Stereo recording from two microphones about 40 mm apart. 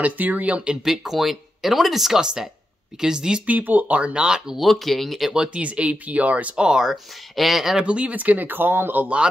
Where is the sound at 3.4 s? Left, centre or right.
Right.